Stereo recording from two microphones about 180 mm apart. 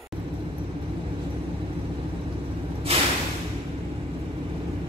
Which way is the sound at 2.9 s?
35° right (ahead or behind).